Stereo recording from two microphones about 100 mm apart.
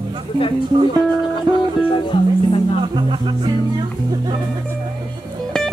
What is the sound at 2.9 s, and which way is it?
Music, 50° right (ahead or behind).